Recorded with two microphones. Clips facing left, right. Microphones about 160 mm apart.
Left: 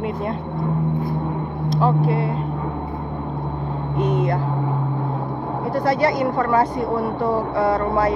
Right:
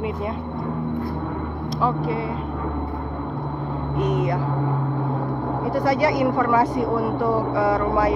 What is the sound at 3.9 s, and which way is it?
Speech, 30° left (ahead or behind).